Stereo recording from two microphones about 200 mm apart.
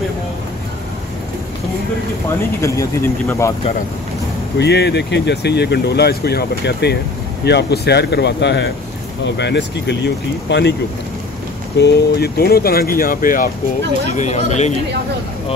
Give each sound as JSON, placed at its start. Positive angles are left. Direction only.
{"t": 2.6, "sound": "speech", "side_deg": 15}
{"t": 4.6, "sound": "speech", "side_deg": 55}
{"t": 11.8, "sound": "speech", "side_deg": 50}